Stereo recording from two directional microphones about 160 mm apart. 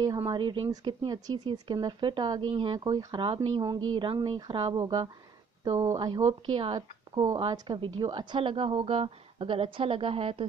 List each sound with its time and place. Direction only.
0.0 s a woman's voice: 25° right (ahead or behind)